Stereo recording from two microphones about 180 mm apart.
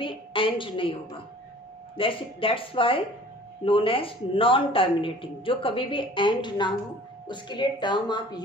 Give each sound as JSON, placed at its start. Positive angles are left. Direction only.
{"t": 0.0, "sound": "a woman's voice", "side_deg": 30}